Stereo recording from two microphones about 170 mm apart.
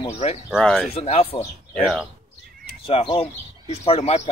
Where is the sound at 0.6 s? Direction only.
5° left (ahead or behind).